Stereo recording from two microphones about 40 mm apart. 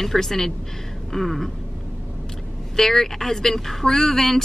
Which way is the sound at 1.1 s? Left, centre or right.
Centre.